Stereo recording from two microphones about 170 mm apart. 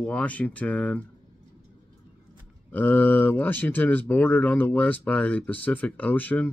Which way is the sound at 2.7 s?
10° left (ahead or behind).